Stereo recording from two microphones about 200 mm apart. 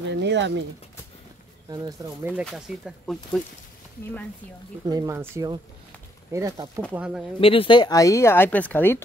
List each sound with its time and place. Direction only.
0.1 s speech: 60° right (ahead or behind)
1.7 s speech: 20° right (ahead or behind)
2.4 s speech: centre (ahead or behind)
4.8 s speech: 15° right (ahead or behind)
6.9 s speech: 5° right (ahead or behind)
7.3 s speech: 25° left (ahead or behind); by 9.0 s 10° left (ahead or behind)